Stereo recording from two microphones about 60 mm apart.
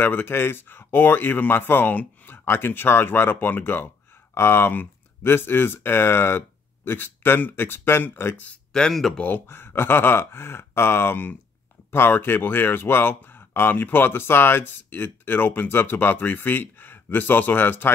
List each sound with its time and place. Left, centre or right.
0.0 s speech: left
8.7 s speech: centre
9.5 s speech: left